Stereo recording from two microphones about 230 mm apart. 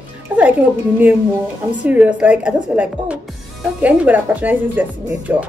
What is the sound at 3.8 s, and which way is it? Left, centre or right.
Speech, centre.